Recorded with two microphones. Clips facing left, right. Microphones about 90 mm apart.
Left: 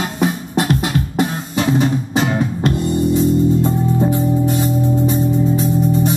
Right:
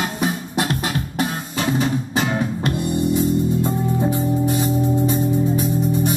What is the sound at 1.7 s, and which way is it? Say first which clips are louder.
Music: left 3 dB; 20° left (ahead or behind).